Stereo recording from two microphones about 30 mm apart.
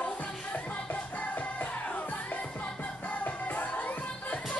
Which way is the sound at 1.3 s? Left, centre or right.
Left.